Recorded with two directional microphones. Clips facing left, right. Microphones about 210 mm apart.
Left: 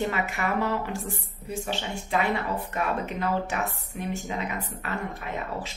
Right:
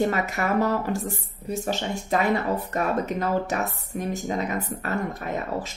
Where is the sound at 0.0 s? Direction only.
40° right (ahead or behind).